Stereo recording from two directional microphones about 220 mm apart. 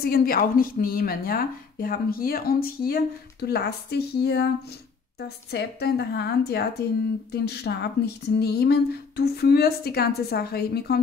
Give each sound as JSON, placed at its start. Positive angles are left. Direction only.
{"t": 0.0, "sound": "a woman's voice", "side_deg": 40}